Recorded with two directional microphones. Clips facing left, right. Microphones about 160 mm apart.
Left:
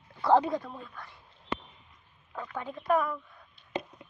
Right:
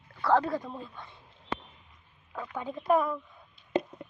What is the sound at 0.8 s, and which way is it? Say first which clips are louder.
Speech: right 2 dB; 25° right (ahead or behind).